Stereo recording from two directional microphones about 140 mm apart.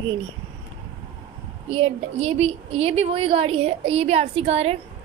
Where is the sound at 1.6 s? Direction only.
40° right (ahead or behind).